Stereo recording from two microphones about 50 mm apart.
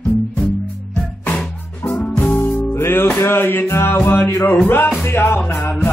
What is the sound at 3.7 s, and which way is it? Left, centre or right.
Music, left.